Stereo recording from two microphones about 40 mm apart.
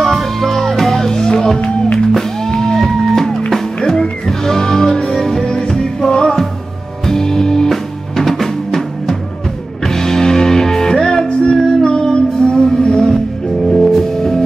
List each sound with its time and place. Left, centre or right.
0.0 s music: centre
1.6 s music: left
2.1 s music: centre
7.1 s drum: centre
9.8 s music: centre
13.7 s music: centre